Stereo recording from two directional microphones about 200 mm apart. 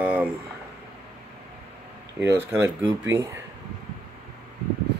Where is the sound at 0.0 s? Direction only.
5° right (ahead or behind).